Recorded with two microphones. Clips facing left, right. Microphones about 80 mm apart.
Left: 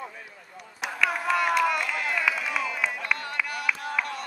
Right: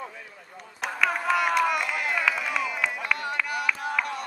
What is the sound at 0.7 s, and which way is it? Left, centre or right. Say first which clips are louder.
Chop: right 1 dB; centre.